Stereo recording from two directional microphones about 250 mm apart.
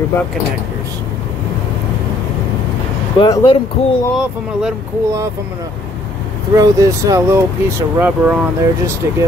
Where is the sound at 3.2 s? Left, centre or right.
Centre.